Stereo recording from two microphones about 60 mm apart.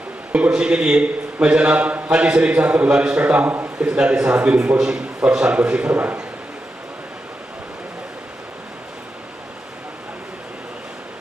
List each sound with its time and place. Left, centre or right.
0.5 s a man's voice: centre
3.9 s a man's voice: centre
4.7 s a man's voice: centre